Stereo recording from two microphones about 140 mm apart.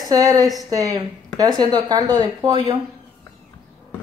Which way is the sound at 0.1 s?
25° right (ahead or behind).